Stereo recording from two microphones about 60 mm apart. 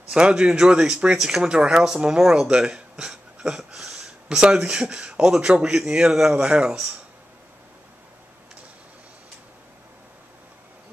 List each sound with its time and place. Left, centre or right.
0.1 s speech: centre